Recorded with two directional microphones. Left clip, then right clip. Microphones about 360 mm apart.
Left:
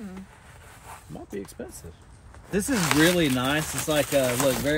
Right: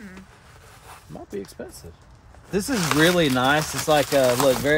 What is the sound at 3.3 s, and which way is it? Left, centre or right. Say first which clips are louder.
Speech: right 6 dB; right.